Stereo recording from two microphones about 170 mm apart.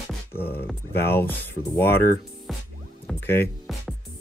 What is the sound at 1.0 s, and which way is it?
Speech, 65° left (ahead or behind).